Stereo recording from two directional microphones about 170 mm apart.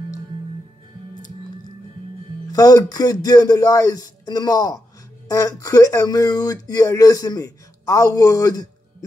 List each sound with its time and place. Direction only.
2.5 s speech: 20° left (ahead or behind)